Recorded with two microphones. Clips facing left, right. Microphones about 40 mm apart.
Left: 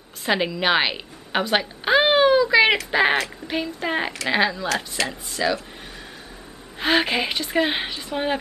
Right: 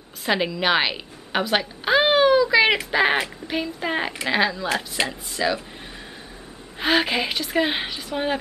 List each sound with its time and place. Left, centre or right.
0.2 s a woman's voice: centre
6.8 s speech: centre